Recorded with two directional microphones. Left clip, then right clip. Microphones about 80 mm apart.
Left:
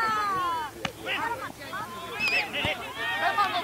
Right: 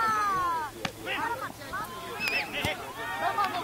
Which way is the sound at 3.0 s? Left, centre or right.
Left.